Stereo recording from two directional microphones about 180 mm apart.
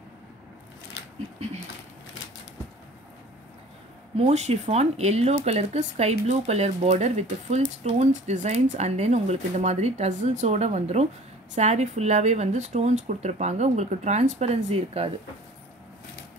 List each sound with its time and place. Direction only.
4.2 s speech: 35° right (ahead or behind)